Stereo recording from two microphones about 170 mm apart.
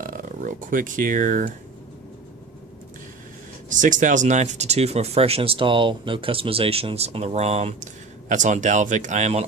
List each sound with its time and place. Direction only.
0.0 s speech: 50° right (ahead or behind)
3.6 s speech: 50° right (ahead or behind)